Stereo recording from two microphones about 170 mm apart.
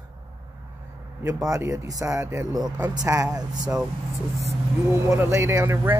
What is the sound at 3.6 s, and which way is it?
Speech, 5° right (ahead or behind).